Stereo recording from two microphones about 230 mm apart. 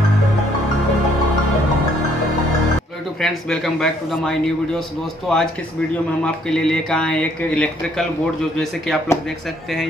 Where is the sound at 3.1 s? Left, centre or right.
Centre.